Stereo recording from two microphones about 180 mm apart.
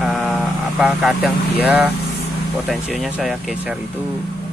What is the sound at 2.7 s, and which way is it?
Speech, 5° right (ahead or behind).